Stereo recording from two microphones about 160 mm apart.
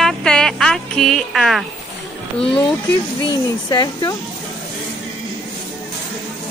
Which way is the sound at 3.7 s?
25° left (ahead or behind).